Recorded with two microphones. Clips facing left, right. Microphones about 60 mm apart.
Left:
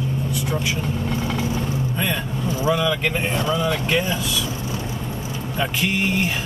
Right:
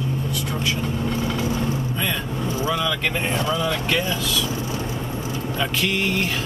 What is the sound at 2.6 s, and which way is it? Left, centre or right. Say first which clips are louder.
Vehicle: left 4 dB; centre.